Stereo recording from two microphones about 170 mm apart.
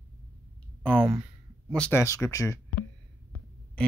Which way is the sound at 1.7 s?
5° left (ahead or behind).